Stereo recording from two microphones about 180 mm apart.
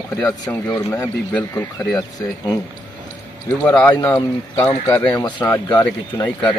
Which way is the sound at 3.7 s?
10° left (ahead or behind).